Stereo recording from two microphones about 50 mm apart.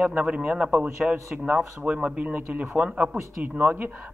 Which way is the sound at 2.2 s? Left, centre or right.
Right.